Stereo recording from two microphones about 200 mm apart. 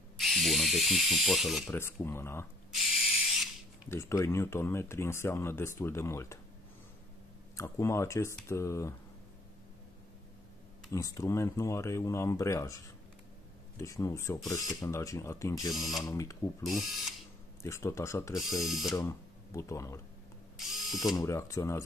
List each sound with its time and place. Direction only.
0.2 s speech: centre (ahead or behind)
1.7 s speech: 10° left (ahead or behind)
2.7 s ratchet: centre (ahead or behind)
3.9 s speech: 15° left (ahead or behind)
7.5 s speech: 15° left (ahead or behind)
10.9 s speech: 15° left (ahead or behind)
15.7 s speech: centre (ahead or behind)
16.0 s speech: 15° left (ahead or behind)
16.6 s speech: centre (ahead or behind)
17.6 s speech: 15° left (ahead or behind)
18.3 s speech: centre (ahead or behind)
18.9 s speech: 15° left (ahead or behind)
20.5 s ratchet: centre (ahead or behind)
21.2 s speech: 15° left (ahead or behind)